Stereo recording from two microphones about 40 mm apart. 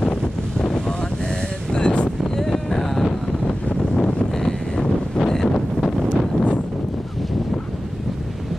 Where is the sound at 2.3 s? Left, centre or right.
Centre.